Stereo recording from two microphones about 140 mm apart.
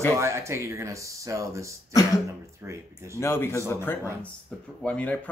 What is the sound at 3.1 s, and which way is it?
A man's voice, 15° left (ahead or behind).